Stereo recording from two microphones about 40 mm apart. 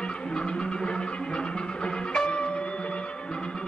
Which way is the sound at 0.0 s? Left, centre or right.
Left.